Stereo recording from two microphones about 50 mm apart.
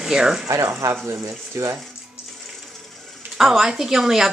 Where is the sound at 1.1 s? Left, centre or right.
Right.